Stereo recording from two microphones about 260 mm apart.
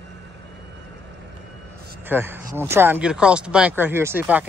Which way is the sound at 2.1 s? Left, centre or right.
Centre.